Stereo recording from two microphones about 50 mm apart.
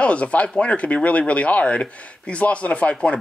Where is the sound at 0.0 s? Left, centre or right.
Left.